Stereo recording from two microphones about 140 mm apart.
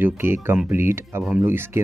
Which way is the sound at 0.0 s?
15° right (ahead or behind).